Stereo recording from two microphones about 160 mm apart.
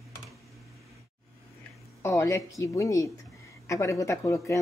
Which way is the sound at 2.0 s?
20° left (ahead or behind).